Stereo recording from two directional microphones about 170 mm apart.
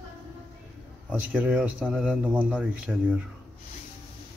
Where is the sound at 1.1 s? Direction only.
10° right (ahead or behind).